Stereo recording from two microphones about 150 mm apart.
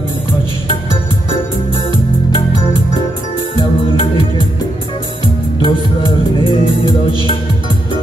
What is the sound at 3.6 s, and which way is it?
Music, 35° left (ahead or behind).